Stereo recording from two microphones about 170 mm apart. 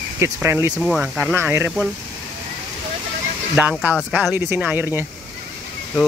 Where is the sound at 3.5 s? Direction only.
10° right (ahead or behind).